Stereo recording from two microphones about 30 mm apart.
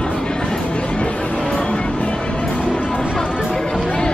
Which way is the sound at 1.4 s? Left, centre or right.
Left.